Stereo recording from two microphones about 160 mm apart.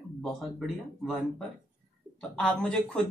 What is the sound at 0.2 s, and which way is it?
Speech, centre (ahead or behind).